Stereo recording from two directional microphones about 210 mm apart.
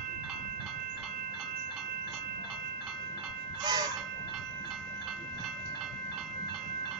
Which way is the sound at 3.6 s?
20° right (ahead or behind).